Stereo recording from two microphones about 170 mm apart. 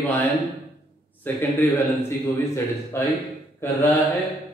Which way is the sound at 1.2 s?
15° left (ahead or behind).